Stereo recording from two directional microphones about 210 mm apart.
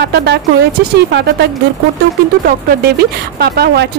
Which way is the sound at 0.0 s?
50° right (ahead or behind).